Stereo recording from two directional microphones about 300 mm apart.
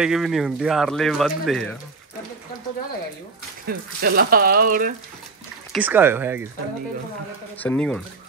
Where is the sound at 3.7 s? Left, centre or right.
Right.